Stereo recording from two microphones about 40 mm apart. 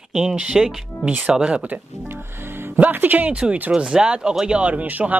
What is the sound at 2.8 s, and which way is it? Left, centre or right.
Speech, right.